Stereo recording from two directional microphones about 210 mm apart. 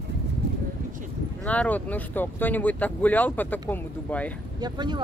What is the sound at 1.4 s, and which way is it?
Speech, 5° left (ahead or behind).